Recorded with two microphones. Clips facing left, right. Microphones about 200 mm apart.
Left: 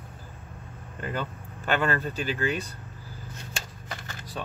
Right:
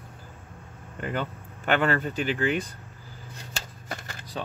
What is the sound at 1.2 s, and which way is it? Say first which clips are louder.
Speech: right 2 dB; 15° right (ahead or behind).